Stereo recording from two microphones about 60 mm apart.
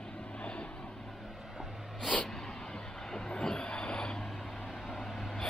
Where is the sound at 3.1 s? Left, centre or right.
Centre.